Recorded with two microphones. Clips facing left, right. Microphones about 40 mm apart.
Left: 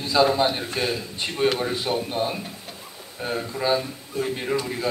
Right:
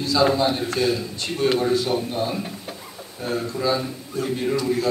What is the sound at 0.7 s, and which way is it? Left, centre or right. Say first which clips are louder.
Speech: right 4 dB; centre.